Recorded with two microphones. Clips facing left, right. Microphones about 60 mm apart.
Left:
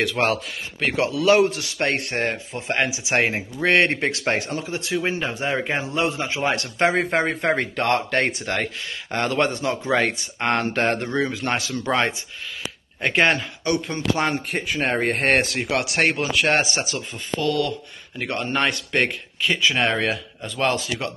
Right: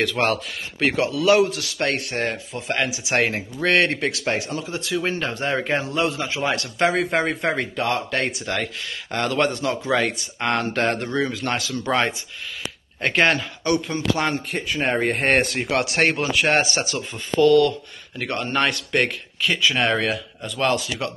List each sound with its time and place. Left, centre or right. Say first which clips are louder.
0.0 s speech: even; left
5.0 s speech: even; centre; by 7.5 s left
7.5 s speech: left 2 dB; left
13.1 s speech: even; centre
14.8 s a man's voice: right 1 dB; centre
16.6 s speech: right 1 dB; centre; by 21.1 s left